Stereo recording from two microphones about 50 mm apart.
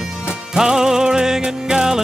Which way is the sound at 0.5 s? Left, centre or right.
Centre.